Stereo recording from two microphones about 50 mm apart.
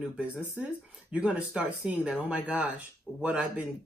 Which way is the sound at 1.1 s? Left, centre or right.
Centre.